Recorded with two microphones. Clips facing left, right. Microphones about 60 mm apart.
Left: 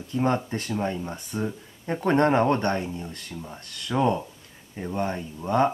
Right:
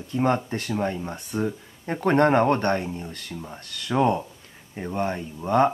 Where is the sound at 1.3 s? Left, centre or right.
Right.